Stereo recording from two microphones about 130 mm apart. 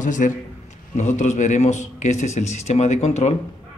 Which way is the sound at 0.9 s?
70° left (ahead or behind).